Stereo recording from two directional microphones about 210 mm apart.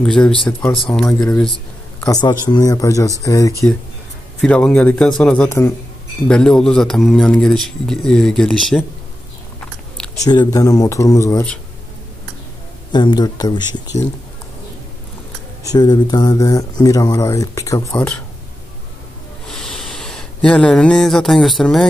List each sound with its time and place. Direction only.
0.0 s a man's voice: 5° left (ahead or behind)
2.0 s a man's voice: 15° left (ahead or behind); by 8.8 s centre (ahead or behind)
9.6 s biting: 5° left (ahead or behind)
10.1 s speech: 20° left (ahead or behind)
12.9 s speech: 20° left (ahead or behind)
15.7 s speech: 20° left (ahead or behind)
19.4 s a sound: 5° left (ahead or behind)